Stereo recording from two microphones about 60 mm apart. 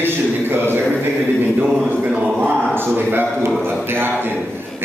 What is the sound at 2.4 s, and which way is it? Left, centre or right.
A man's voice, right.